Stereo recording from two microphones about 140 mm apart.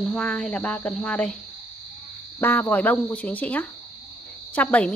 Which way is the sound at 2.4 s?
15° left (ahead or behind).